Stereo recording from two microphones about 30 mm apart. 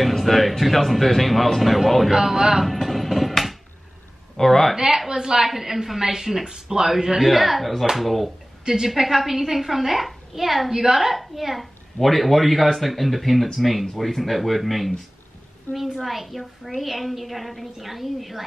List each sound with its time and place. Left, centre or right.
0.2 s a woman's voice: centre
2.0 s a woman's voice: centre
2.6 s a sound: centre
4.4 s speech: centre
4.7 s a woman's voice: centre
6.9 s a woman's voice: centre